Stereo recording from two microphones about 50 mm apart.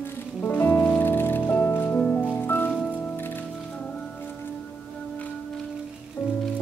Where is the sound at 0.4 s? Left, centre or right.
Left.